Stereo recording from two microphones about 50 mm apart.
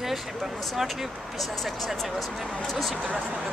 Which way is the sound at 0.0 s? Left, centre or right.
Centre.